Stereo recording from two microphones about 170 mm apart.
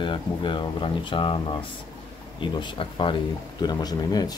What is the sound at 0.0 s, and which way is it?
Speech, 30° left (ahead or behind).